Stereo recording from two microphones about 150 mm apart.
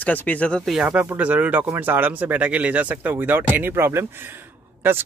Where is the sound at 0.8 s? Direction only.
10° right (ahead or behind).